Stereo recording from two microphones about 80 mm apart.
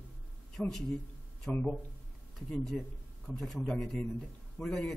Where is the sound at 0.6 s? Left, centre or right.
Centre.